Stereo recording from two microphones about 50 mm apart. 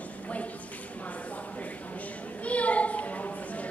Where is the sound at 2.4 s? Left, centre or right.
Left.